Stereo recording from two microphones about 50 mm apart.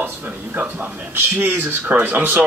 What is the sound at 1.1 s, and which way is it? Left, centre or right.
Speech, right.